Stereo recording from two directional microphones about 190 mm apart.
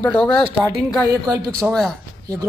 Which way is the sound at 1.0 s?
20° right (ahead or behind).